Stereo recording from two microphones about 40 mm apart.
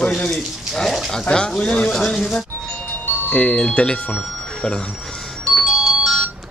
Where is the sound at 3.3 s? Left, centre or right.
Left.